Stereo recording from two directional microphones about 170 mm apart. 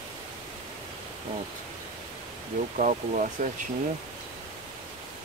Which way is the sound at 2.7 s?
50° right (ahead or behind).